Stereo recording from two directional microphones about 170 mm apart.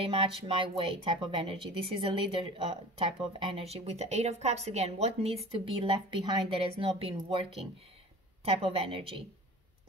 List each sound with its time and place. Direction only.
0.0 s speech: 35° right (ahead or behind)
8.5 s speech: 35° right (ahead or behind)